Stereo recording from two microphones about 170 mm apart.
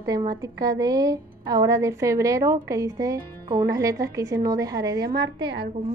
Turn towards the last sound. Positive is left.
turn(degrees=-90)